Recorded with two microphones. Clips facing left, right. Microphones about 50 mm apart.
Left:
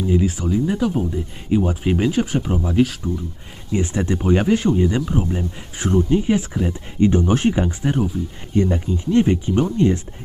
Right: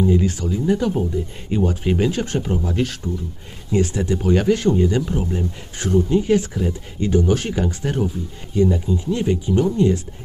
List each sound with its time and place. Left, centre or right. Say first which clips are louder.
0.1 s speech: left 1 dB; centre
3.7 s speech: right 1 dB; left
5.9 s speech: even; left
6.1 s speech: right 1 dB; centre
7.0 s speech: left 2 dB; left
8.5 s speech: right 1 dB; left